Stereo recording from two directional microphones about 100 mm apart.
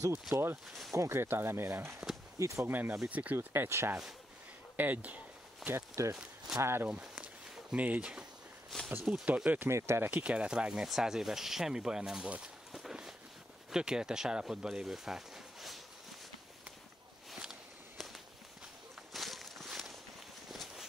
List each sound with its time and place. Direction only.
0.9 s speech: 30° right (ahead or behind)
2.7 s speech: 20° right (ahead or behind)
6.1 s speech: 5° right (ahead or behind)
6.6 s speech: 25° right (ahead or behind)
6.9 s speech: 10° right (ahead or behind)
8.6 s a sound: 5° left (ahead or behind)
9.0 s speech: 10° right (ahead or behind)
10.2 s speech: 10° right (ahead or behind)
17.3 s walk: centre (ahead or behind)
19.1 s walk: centre (ahead or behind)